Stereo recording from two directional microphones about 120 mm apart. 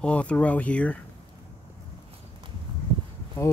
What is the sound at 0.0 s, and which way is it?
Speech, 10° left (ahead or behind).